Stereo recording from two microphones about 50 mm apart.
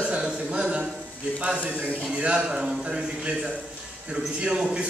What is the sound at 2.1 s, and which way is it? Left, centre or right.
Speech, right.